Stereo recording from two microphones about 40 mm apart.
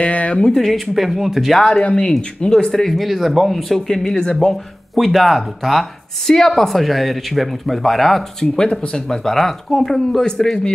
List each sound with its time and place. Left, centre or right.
0.0 s speech: left
0.6 s speech: centre
0.9 s speech: centre
1.6 s a man's voice: centre
3.0 s speech: centre
3.8 s speech: centre
4.9 s speech: centre
6.2 s speech: centre
8.5 s a man's voice: centre